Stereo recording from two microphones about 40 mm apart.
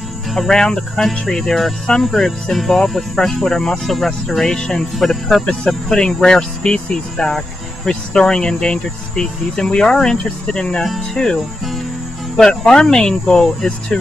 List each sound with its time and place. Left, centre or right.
0.3 s speech: centre
4.9 s speech: centre
5.9 s speech: centre
11.2 s speech: centre
12.4 s speech: centre